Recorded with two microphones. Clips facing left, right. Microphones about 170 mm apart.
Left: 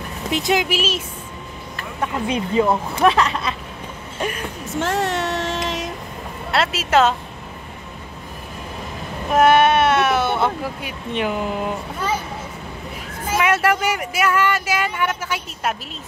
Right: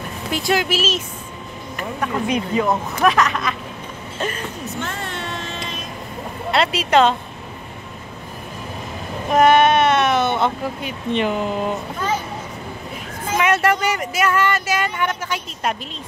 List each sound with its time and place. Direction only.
0.3 s speech: 20° left (ahead or behind)
2.0 s speech: 30° left (ahead or behind)
4.2 s speech: 10° left (ahead or behind)
4.7 s child singing: 85° left
6.5 s speech: 5° left (ahead or behind)
9.3 s speech: 10° left (ahead or behind)
13.2 s speech: 5° left (ahead or behind)